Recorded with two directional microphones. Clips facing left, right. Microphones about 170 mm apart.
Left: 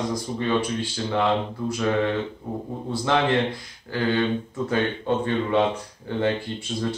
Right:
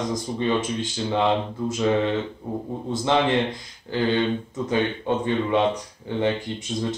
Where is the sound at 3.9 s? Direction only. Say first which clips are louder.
Right 1 dB; 20° right (ahead or behind).